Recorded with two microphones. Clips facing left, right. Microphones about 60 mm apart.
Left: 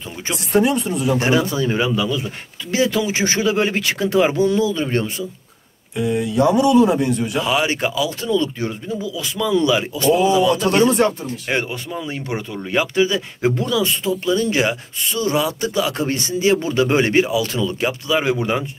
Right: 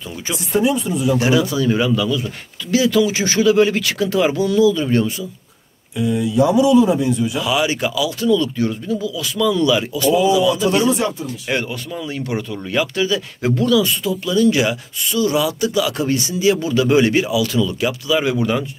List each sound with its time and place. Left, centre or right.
0.5 s speech: left
1.2 s speech: left
5.9 s speech: left
7.3 s speech: left
9.9 s speech: left
11.2 s speech: left